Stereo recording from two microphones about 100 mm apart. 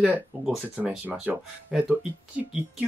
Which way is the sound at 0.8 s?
10° right (ahead or behind).